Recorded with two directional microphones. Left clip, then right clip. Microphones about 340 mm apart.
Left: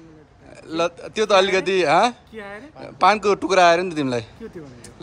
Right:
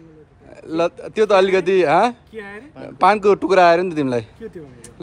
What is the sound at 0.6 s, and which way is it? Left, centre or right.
Speech, centre.